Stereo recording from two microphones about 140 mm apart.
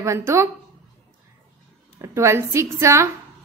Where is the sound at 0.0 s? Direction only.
20° right (ahead or behind).